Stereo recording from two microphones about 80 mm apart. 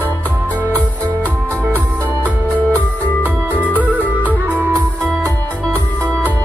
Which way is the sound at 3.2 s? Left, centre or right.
Right.